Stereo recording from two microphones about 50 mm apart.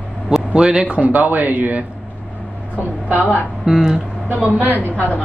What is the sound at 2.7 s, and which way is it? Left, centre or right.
Speech, left.